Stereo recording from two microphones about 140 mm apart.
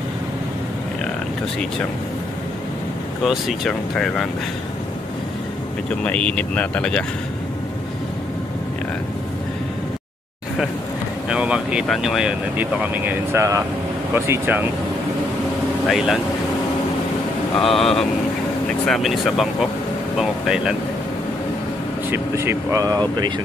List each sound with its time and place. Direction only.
3.3 s speech: centre (ahead or behind)
6.0 s speech: 10° left (ahead or behind)
11.2 s vehicle: 5° right (ahead or behind)
11.9 s speech: 5° right (ahead or behind)
15.9 s speech: centre (ahead or behind)
17.6 s speech: centre (ahead or behind)
22.1 s speech: 20° right (ahead or behind)